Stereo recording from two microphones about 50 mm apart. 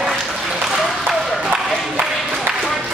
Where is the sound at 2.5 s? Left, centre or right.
Right.